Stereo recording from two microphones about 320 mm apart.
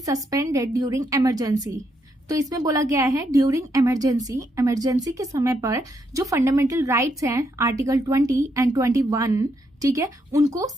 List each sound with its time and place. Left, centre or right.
0.0 s a woman's voice: centre